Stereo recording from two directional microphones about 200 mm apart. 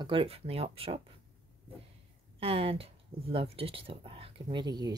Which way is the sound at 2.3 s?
25° right (ahead or behind).